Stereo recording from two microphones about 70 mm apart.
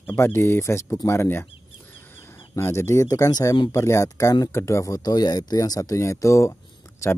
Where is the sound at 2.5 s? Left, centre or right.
Left.